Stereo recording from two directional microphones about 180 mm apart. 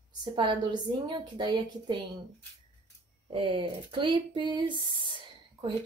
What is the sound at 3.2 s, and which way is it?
Speech, 30° right (ahead or behind).